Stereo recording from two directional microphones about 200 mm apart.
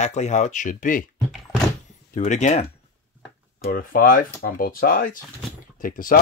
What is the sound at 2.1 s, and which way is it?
Speech, 35° left (ahead or behind).